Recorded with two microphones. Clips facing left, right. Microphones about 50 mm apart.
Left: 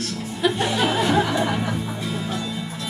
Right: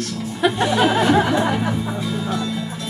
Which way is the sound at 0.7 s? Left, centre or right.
Right.